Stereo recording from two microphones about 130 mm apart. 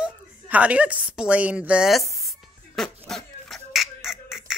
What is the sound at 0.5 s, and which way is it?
A woman's voice, 10° right (ahead or behind).